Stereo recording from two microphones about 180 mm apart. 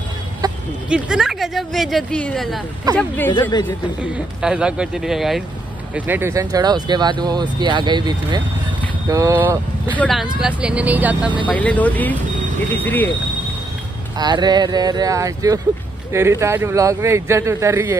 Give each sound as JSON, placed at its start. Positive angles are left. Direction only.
{"t": 0.4, "sound": "a sound", "side_deg": -20}
{"t": 0.8, "sound": "speech", "side_deg": -5}
{"t": 4.0, "sound": "a man's voice", "side_deg": -5}
{"t": 9.9, "sound": "speech", "side_deg": 0}
{"t": 11.5, "sound": "speech", "side_deg": 10}
{"t": 14.1, "sound": "a man's voice", "side_deg": -25}